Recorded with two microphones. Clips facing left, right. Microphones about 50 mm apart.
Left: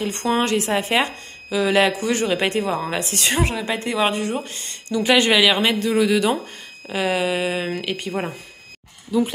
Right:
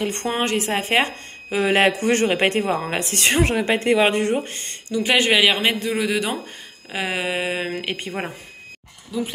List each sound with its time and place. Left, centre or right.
0.0 s a woman's voice: right
0.4 s speech: right
1.5 s a woman's voice: right
4.8 s speech: centre; by 8.1 s right